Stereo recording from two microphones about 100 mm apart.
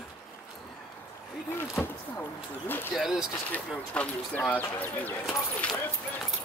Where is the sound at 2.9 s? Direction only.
5° right (ahead or behind).